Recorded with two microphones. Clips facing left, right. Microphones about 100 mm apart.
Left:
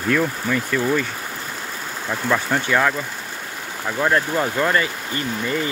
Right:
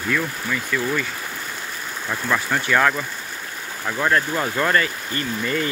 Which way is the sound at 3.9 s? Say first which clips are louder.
Left 1 dB; 15° left (ahead or behind).